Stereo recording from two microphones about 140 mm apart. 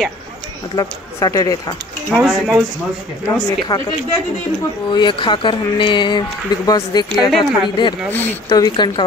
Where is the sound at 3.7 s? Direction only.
20° left (ahead or behind).